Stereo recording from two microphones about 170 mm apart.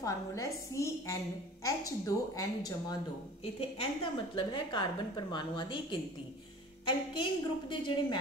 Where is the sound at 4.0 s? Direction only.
30° left (ahead or behind).